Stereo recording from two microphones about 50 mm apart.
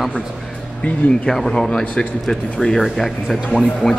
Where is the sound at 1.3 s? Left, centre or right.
Centre.